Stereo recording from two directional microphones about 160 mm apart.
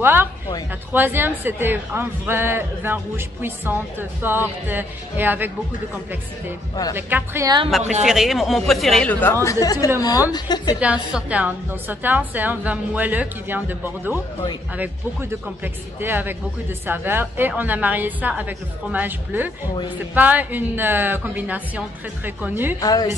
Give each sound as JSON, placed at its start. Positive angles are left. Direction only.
{"t": 0.0, "sound": "speech", "side_deg": -15}
{"t": 6.7, "sound": "a woman's voice", "side_deg": 25}
{"t": 7.0, "sound": "speech", "side_deg": -15}
{"t": 7.4, "sound": "a woman's voice", "side_deg": -30}
{"t": 8.0, "sound": "a woman's voice", "side_deg": 0}
{"t": 10.8, "sound": "speech", "side_deg": -10}
{"t": 22.8, "sound": "a woman's voice", "side_deg": 20}